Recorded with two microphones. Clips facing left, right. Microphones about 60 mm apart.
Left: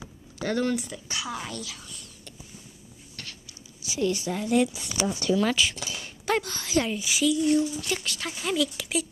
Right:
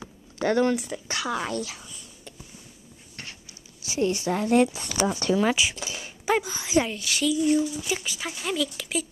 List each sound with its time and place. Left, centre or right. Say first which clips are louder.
0.4 s speech: right 4 dB; right
1.2 s speech: right 7 dB; right
1.5 s a woman's voice: right 7 dB; right
3.9 s a woman's voice: right 2 dB; right
4.3 s a woman's voice: right 5 dB; right
5.4 s speech: right 1 dB; centre
7.0 s speech: left 1 dB; centre
7.2 s speech: even; centre